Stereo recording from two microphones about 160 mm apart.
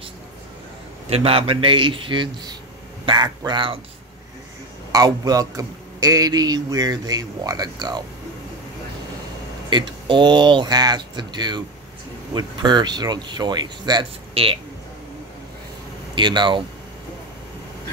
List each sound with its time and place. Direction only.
1.1 s speech: 35° right (ahead or behind)
4.9 s a man's voice: 25° right (ahead or behind)
9.7 s a man's voice: 30° right (ahead or behind)
16.2 s a man's voice: 30° right (ahead or behind)